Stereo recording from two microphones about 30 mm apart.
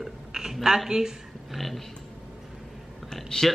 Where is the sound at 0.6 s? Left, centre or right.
Centre.